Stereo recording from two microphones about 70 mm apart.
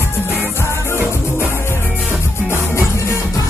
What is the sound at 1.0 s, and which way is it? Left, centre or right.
Music, right.